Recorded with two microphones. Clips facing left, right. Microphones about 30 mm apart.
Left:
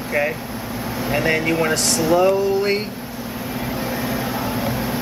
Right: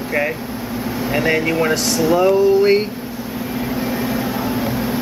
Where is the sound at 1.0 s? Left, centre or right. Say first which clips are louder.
Right 2 dB; centre.